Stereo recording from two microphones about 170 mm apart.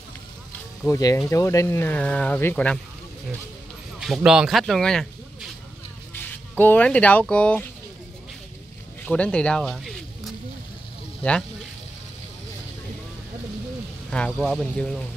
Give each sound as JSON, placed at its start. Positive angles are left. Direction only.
{"t": 0.8, "sound": "speech", "side_deg": 20}
{"t": 4.0, "sound": "speech", "side_deg": -5}
{"t": 9.0, "sound": "a sound", "side_deg": 5}
{"t": 14.1, "sound": "speech", "side_deg": 5}